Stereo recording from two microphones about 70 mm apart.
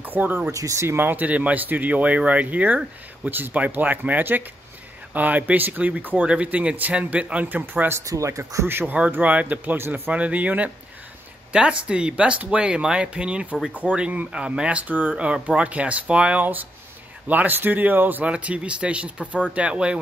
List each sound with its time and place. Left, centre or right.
0.0 s speech: right
0.5 s speech: right
0.8 s speech: right
8.0 s speech: right
8.6 s a man's voice: right
10.1 s speech: right
18.3 s speech: centre